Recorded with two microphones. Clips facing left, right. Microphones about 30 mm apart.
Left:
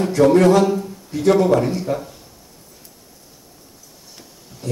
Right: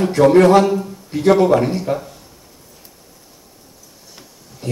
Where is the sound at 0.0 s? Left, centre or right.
Right.